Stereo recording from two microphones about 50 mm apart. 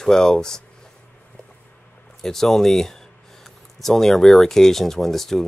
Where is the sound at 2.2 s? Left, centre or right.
Centre.